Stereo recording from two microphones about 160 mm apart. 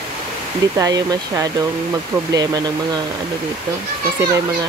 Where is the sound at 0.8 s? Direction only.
25° right (ahead or behind).